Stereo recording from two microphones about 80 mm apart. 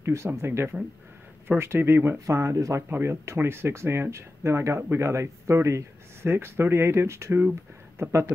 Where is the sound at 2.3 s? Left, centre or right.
Right.